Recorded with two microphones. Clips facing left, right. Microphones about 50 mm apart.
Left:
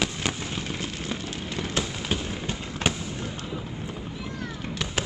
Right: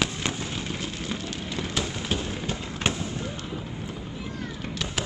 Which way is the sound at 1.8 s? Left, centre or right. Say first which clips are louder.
Even; centre.